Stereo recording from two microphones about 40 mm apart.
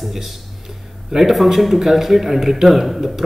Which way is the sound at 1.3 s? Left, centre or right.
Centre.